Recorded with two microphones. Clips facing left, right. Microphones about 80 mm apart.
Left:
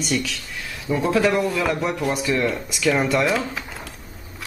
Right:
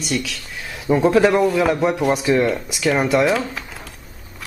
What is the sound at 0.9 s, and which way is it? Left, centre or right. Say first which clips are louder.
Speech: right 6 dB; right.